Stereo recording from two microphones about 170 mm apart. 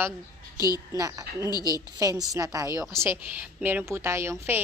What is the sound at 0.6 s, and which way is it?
A woman's voice, 20° right (ahead or behind).